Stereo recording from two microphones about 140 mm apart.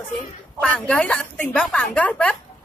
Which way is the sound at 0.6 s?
10° left (ahead or behind).